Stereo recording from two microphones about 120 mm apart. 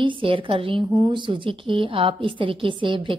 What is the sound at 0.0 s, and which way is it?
A woman's voice, 45° right (ahead or behind).